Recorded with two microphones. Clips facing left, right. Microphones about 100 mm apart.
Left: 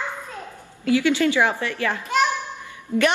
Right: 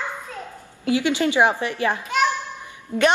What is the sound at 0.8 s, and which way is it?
A woman's voice, 20° right (ahead or behind).